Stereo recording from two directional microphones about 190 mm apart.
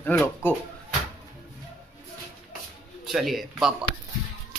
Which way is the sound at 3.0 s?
Centre (ahead or behind).